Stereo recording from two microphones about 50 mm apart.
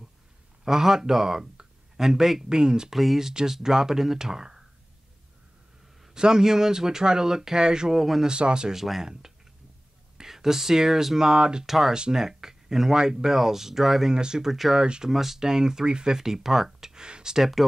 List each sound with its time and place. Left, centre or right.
0.7 s speech: centre
6.1 s speech: centre
8.3 s speech: centre
11.6 s speech: centre